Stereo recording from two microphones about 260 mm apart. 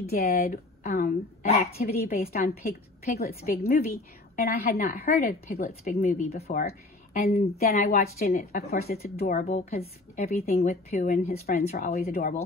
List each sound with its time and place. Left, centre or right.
0.1 s speech: left
7.4 s speech: left
7.8 s speech: left